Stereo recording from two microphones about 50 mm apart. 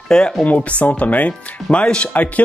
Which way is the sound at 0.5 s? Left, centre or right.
Left.